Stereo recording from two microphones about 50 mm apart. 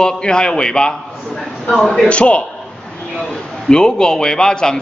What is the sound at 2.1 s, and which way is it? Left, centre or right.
A man's voice, left.